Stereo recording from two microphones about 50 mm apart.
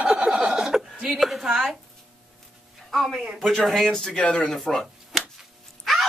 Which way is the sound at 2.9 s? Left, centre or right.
Centre.